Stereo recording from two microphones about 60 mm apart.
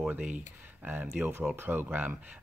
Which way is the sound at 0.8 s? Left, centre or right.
Right.